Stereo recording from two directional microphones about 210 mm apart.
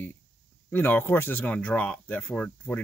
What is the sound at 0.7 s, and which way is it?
Speech, 10° left (ahead or behind).